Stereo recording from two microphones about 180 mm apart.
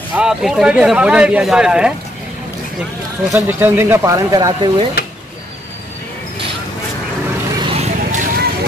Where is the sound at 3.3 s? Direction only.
10° right (ahead or behind).